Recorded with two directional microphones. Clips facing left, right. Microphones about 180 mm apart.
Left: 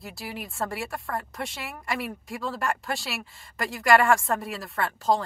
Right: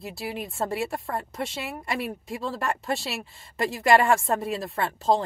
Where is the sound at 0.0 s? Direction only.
20° right (ahead or behind).